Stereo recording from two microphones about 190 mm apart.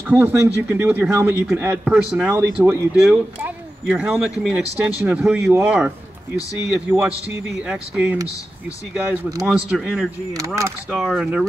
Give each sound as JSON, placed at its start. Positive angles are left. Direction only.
{"t": 0.1, "sound": "speech", "side_deg": -10}
{"t": 9.1, "sound": "speech", "side_deg": -15}
{"t": 9.5, "sound": "speech", "side_deg": -5}
{"t": 10.3, "sound": "speech", "side_deg": -15}
{"t": 10.9, "sound": "speech", "side_deg": 0}